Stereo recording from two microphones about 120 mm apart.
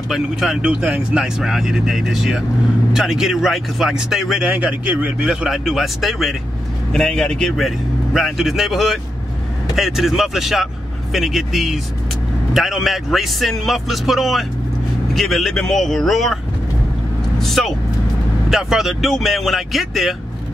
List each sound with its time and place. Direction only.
0.1 s a man's voice: 5° right (ahead or behind)
17.4 s a man's voice: centre (ahead or behind)